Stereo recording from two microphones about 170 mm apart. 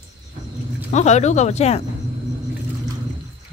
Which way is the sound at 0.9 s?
40° left (ahead or behind).